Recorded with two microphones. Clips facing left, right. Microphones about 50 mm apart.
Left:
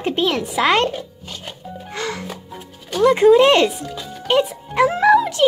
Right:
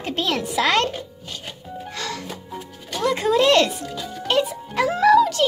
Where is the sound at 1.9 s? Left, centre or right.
Left.